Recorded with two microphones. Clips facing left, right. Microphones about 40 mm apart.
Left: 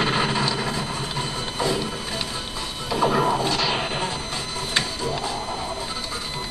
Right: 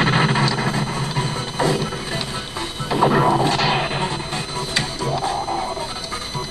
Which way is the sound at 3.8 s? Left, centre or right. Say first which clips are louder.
Right 4 dB; centre.